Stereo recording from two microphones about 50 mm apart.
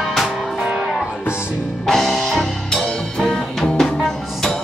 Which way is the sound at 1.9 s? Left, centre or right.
Centre.